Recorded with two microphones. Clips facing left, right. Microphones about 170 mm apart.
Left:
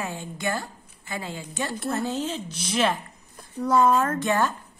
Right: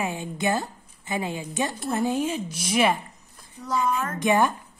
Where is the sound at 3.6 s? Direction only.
55° left (ahead or behind).